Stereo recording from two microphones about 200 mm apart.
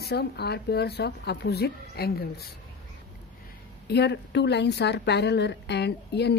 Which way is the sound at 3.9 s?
55° left (ahead or behind).